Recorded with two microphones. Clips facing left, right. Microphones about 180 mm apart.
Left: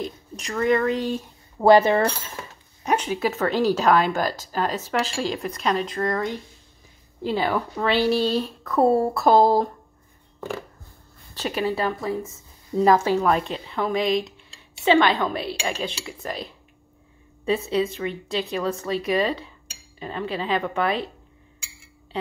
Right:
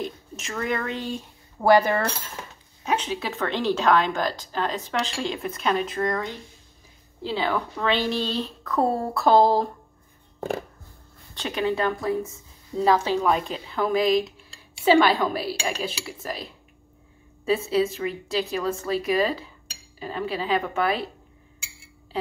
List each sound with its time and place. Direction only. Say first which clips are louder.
0.0 s speech: left 1 dB; 5° right (ahead or behind)
1.6 s a sound: left 3 dB; 20° left (ahead or behind)
2.8 s speech: left 4 dB; 10° left (ahead or behind)
3.5 s speech: left 2 dB; 40° left (ahead or behind)
3.8 s a woman's voice: left 2 dB; 10° left (ahead or behind)
7.3 s speech: left 1 dB; 10° left (ahead or behind)
11.3 s a woman's voice: even; 5° left (ahead or behind)
13.3 s a woman's voice: left 1 dB; centre (ahead or behind)